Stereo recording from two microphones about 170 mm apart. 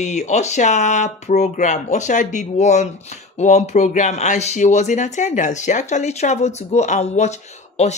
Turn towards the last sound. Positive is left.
turn(degrees=40)  # may be behind; listen again after turning